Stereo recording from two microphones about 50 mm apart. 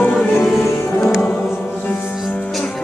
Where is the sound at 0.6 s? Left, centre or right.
Left.